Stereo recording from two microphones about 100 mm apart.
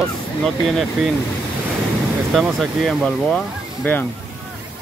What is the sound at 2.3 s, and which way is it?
Speech, centre (ahead or behind).